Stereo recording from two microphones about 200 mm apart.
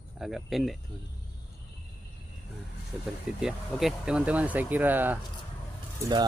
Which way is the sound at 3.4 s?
Centre (ahead or behind).